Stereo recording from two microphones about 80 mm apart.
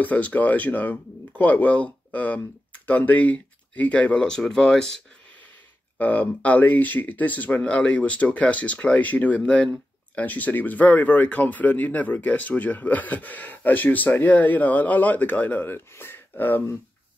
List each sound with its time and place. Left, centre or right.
0.0 s speech: left
5.9 s speech: centre